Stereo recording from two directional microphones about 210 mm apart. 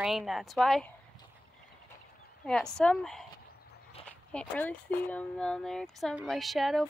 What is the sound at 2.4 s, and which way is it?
Speech, 5° left (ahead or behind).